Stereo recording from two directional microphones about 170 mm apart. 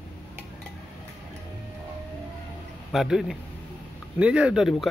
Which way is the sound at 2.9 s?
Centre (ahead or behind).